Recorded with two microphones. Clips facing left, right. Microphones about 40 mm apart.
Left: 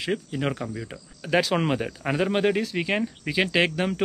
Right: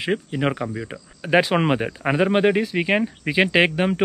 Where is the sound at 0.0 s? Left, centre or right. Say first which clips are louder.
Right 4 dB; right.